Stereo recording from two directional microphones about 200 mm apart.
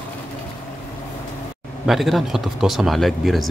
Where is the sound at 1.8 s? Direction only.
Centre (ahead or behind).